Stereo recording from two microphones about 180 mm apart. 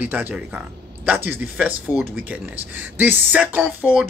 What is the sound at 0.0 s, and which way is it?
Speech, 10° right (ahead or behind).